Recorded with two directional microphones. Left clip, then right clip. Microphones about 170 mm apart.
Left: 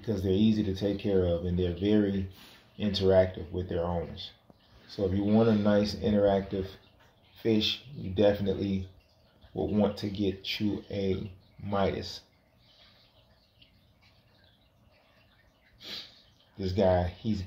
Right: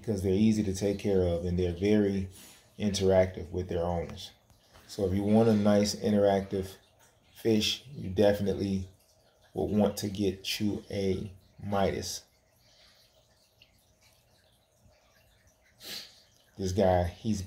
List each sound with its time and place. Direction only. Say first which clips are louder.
0.0 s speech: even; 20° right (ahead or behind)
15.8 s a sound: left 1 dB; 20° right (ahead or behind)
16.5 s speech: even; 20° right (ahead or behind)